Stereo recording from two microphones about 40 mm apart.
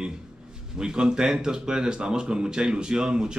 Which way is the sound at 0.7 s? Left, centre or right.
Centre.